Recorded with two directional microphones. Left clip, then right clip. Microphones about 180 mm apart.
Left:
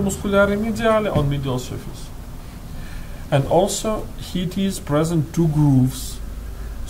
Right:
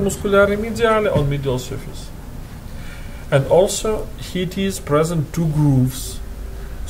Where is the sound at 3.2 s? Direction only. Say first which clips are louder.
Right 3 dB; 45° right (ahead or behind).